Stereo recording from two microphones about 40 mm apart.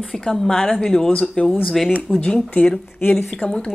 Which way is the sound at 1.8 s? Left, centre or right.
Centre.